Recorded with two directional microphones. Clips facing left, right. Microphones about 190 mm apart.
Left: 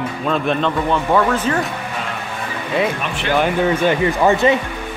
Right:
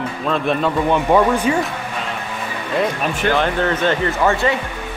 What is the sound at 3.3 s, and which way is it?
Speech, 10° left (ahead or behind).